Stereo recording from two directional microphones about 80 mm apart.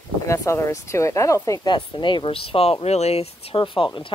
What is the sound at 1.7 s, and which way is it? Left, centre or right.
Speech, left.